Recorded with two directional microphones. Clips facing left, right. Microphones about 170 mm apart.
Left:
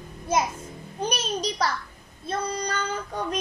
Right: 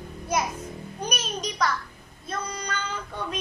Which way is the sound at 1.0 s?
30° left (ahead or behind).